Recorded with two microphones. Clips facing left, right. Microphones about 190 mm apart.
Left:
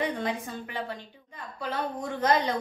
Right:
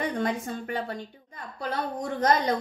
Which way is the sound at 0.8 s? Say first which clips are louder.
Right 3 dB; 45° right (ahead or behind).